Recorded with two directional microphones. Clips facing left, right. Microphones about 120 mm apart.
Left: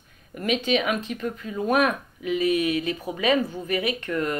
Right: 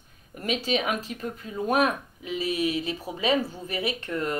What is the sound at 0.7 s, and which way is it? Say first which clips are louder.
Speech: left 2 dB; 35° right (ahead or behind).